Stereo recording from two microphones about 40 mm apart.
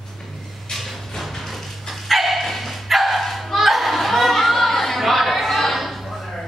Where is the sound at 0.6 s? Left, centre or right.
Centre.